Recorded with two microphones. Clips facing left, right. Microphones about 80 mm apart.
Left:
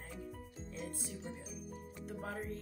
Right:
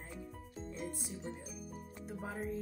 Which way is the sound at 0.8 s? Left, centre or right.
Centre.